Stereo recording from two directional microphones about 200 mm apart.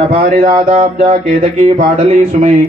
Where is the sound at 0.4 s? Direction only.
40° right (ahead or behind).